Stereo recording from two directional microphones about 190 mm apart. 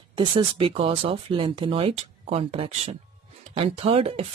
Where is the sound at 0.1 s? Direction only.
25° right (ahead or behind).